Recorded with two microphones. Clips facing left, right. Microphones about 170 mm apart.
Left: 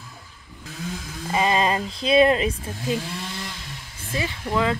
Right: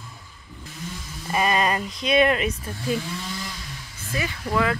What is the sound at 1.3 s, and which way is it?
Speech, 25° left (ahead or behind).